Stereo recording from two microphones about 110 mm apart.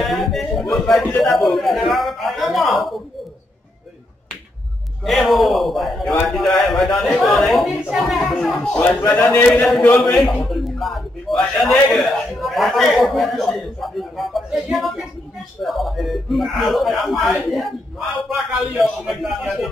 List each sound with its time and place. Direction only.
0.1 s a man's voice: centre (ahead or behind)
5.0 s a man's voice: centre (ahead or behind)
9.0 s a man's voice: 15° left (ahead or behind)
9.5 s a man's voice: 5° left (ahead or behind)